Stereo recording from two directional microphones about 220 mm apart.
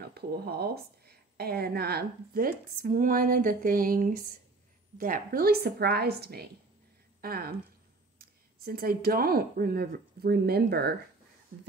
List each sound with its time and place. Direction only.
0.1 s a woman's voice: 45° right (ahead or behind)